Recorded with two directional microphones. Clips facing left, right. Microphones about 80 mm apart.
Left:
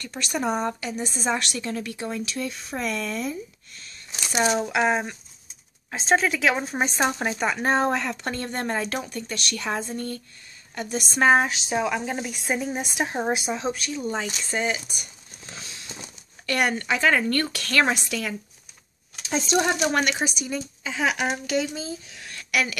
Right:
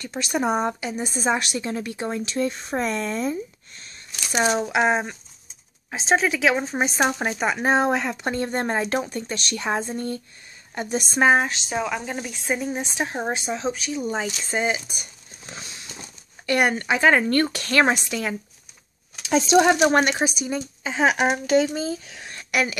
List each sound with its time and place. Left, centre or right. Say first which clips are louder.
0.0 s a woman's voice: right 3 dB; centre
4.3 s a woman's voice: right 1 dB; centre
11.3 s speech: even; centre
13.9 s a woman's voice: right 2 dB; centre
15.4 s a sound: right 2 dB; right
16.4 s a woman's voice: right 3 dB; right
19.2 s speech: right 6 dB; right
20.0 s a woman's voice: right 3 dB; right
21.8 s speech: right 6 dB; right
22.2 s a sound: right 1 dB; right